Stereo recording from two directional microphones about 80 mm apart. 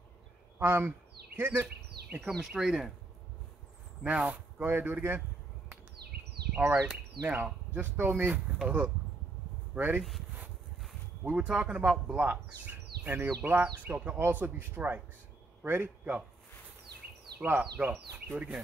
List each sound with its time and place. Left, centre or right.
0.6 s a sound: right
2.4 s speech: centre
4.0 s speech: centre
6.5 s speech: centre
11.2 s a man's voice: centre
17.4 s speech: right